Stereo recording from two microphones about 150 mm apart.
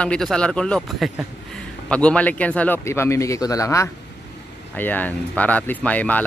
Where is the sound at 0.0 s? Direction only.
5° left (ahead or behind).